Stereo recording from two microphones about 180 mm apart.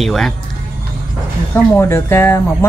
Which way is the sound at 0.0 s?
Centre (ahead or behind).